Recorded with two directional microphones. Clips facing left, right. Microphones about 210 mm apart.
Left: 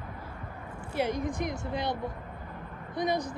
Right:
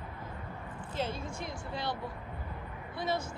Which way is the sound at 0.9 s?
15° left (ahead or behind).